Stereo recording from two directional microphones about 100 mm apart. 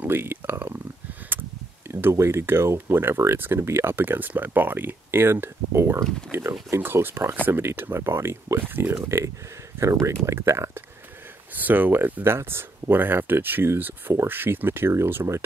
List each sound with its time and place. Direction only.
0.0 s a sound: 20° right (ahead or behind)
1.9 s speech: 25° right (ahead or behind)
11.5 s speech: 20° right (ahead or behind)